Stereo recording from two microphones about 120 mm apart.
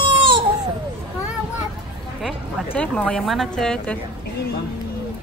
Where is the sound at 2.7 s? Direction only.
10° left (ahead or behind).